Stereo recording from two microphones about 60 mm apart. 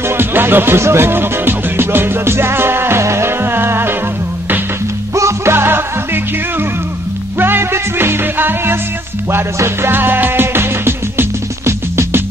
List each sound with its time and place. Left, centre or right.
0.2 s music: right
5.1 s music: right
7.3 s music: right